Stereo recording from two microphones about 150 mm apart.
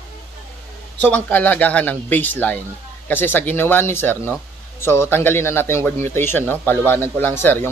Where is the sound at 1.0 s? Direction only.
10° left (ahead or behind).